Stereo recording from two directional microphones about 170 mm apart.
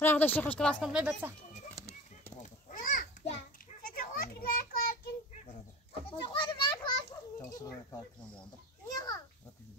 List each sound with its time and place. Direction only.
0.0 s speech: 10° left (ahead or behind)
0.9 s speech: 10° right (ahead or behind)
1.8 s a sound: 15° right (ahead or behind)
2.7 s children playing: 50° left (ahead or behind)
6.2 s children playing: 30° left (ahead or behind)
8.8 s a child's voice: 20° left (ahead or behind)